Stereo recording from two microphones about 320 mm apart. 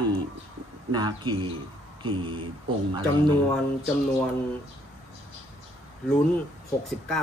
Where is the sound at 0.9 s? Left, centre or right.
Centre.